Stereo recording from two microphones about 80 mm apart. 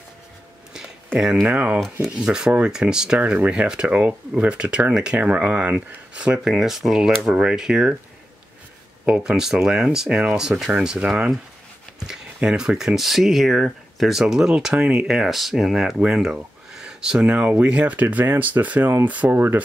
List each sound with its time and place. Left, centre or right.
1.2 s speech: centre
9.0 s speech: centre
16.7 s a sound: centre
17.5 s speech: centre